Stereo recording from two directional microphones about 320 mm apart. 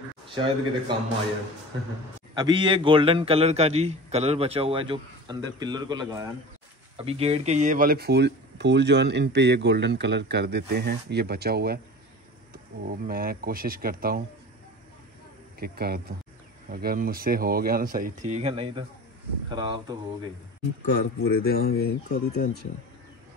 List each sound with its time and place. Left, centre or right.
0.3 s a man's voice: centre
2.3 s a man's voice: centre; by 11.8 s right
12.8 s speech: right
15.6 s a man's voice: right
20.9 s speech: left